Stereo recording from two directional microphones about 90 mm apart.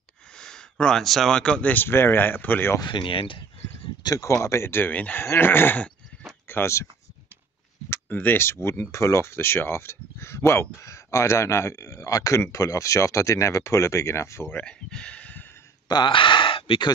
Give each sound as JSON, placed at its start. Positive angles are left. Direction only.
{"t": 0.4, "sound": "speech", "side_deg": 10}
{"t": 2.8, "sound": "speech", "side_deg": 65}
{"t": 4.0, "sound": "speech", "side_deg": 40}
{"t": 7.9, "sound": "speech", "side_deg": 20}
{"t": 14.6, "sound": "a sound", "side_deg": 10}
{"t": 15.9, "sound": "speech", "side_deg": 65}